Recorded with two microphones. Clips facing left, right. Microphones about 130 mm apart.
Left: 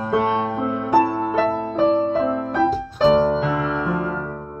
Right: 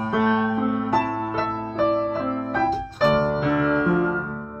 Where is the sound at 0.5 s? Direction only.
25° left (ahead or behind).